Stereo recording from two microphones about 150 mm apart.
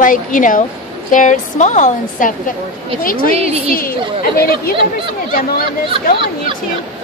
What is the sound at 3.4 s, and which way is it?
Speech, 45° right (ahead or behind).